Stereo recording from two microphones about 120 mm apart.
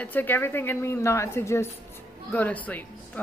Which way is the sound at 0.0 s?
15° left (ahead or behind).